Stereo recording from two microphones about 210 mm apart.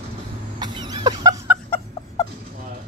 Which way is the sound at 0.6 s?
20° right (ahead or behind).